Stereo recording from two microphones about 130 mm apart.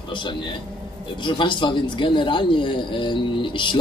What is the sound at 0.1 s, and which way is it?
A man's voice, 35° left (ahead or behind).